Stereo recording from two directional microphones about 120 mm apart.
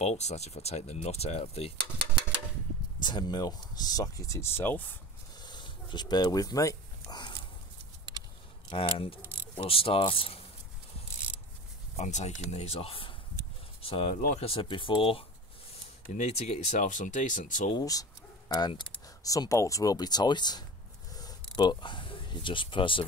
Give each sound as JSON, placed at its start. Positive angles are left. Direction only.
{"t": 0.0, "sound": "speech", "side_deg": 70}
{"t": 3.0, "sound": "speech", "side_deg": 35}
{"t": 5.4, "sound": "a sound", "side_deg": 40}
{"t": 8.6, "sound": "speech", "side_deg": 55}
{"t": 12.0, "sound": "speech", "side_deg": 80}
{"t": 16.2, "sound": "speech", "side_deg": 70}
{"t": 17.7, "sound": "speech", "side_deg": 30}
{"t": 19.2, "sound": "speech", "side_deg": 30}
{"t": 21.1, "sound": "a sound", "side_deg": 30}